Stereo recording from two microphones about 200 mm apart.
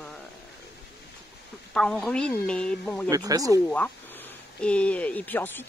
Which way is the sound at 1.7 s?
5° left (ahead or behind).